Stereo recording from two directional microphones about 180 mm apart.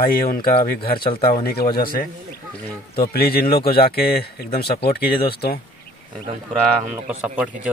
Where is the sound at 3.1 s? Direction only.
60° left (ahead or behind).